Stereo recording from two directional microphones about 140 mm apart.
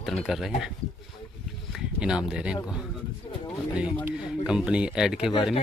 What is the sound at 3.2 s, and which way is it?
Speech, 35° left (ahead or behind).